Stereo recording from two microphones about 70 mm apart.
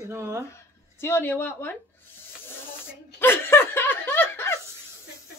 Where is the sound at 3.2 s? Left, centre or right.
Left.